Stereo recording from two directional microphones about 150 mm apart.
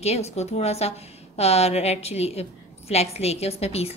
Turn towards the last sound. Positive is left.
turn(degrees=45)  # may be behind; listen again after turning